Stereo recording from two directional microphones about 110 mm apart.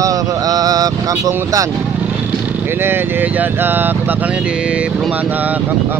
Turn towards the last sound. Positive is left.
turn(degrees=-20)  # may be behind; listen again after turning